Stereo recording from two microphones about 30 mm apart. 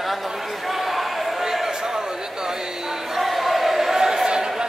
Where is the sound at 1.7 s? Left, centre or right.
Right.